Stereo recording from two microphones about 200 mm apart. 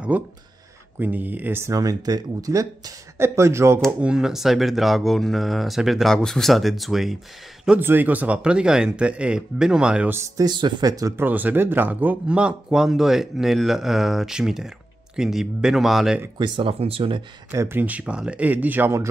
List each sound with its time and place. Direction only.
0.1 s speech: 10° right (ahead or behind)
16.3 s speech: 25° right (ahead or behind)
17.5 s speech: 10° right (ahead or behind)